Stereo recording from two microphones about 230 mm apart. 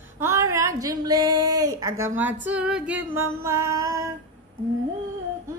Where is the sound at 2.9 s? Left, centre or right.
Right.